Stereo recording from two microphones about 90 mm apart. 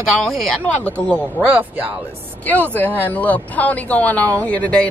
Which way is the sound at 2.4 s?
15° left (ahead or behind).